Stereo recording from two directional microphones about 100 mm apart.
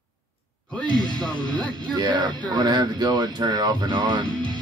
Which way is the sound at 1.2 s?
5° left (ahead or behind).